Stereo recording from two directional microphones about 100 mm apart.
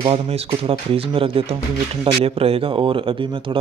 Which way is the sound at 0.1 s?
90° right.